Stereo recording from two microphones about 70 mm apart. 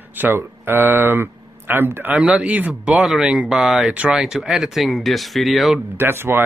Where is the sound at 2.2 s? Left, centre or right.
Centre.